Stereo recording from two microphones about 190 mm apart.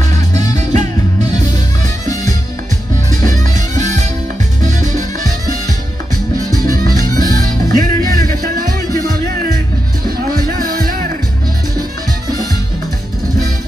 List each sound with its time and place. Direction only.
0.3 s music: 40° right (ahead or behind)
3.3 s music: 40° right (ahead or behind)
6.6 s music: 45° right (ahead or behind)
10.3 s music: 50° right (ahead or behind)